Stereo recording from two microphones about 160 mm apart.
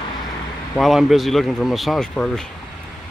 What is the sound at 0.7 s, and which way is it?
A man's voice, centre (ahead or behind).